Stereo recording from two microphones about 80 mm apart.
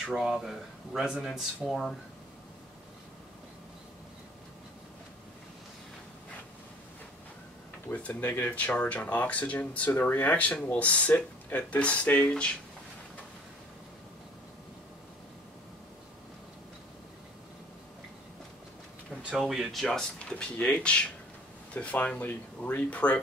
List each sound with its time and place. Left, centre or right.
0.0 s speech: centre
7.9 s speech: centre
19.4 s speech: centre
20.2 s speech: centre